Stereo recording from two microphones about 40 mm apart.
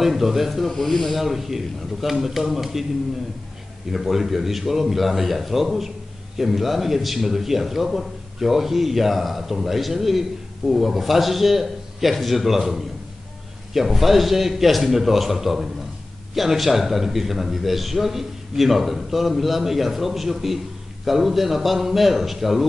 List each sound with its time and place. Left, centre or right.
0.0 s a man's voice: centre
1.2 s a man's voice: centre
3.9 s a man's voice: centre